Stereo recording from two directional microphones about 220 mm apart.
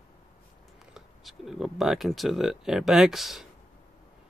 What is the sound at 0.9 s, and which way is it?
Speech, centre (ahead or behind).